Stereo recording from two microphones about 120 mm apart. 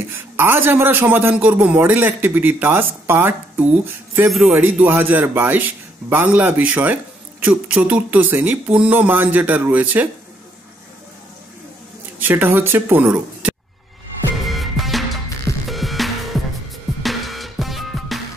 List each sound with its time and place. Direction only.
0.1 s speech: 15° right (ahead or behind)
12.2 s speech: 15° right (ahead or behind)
14.4 s music: centre (ahead or behind)